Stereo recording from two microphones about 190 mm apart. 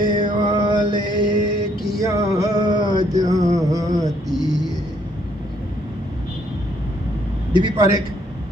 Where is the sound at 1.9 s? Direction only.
20° right (ahead or behind).